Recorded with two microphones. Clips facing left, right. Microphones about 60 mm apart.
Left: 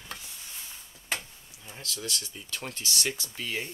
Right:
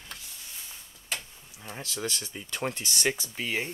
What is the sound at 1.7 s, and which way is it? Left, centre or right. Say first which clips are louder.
Speech: right 2 dB; right.